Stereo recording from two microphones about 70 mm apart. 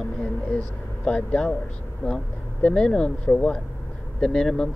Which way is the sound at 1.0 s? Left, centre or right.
Centre.